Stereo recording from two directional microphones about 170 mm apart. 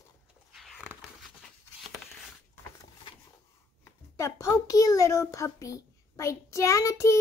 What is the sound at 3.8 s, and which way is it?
A child's voice, 15° left (ahead or behind).